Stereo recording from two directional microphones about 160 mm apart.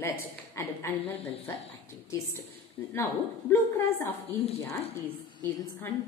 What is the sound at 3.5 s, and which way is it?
Speech, 10° left (ahead or behind).